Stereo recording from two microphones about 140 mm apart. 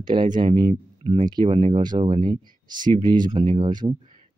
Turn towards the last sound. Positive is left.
turn(degrees=-30)  # may be behind; listen again after turning